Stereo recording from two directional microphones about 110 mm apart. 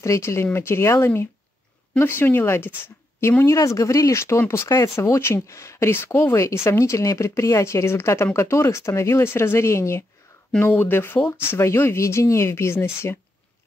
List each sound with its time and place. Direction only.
0.0 s speech: 25° left (ahead or behind)